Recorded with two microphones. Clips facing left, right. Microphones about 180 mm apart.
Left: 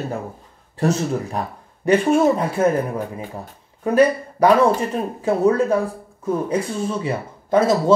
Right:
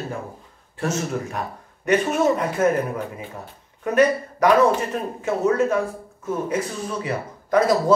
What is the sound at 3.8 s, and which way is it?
Speech, 30° left (ahead or behind).